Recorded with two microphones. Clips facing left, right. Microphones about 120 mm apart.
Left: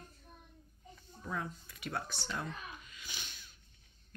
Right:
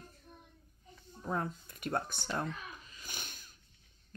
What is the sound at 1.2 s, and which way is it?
Speech, 45° right (ahead or behind).